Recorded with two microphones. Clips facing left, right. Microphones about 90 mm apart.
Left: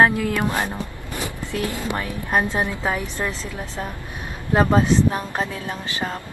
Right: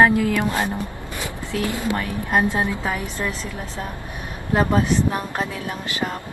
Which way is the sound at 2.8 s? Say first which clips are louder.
Left 1 dB; 20° left (ahead or behind).